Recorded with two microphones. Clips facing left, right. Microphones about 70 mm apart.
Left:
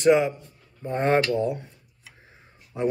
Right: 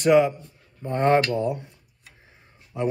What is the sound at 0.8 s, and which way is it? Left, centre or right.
Speech, centre.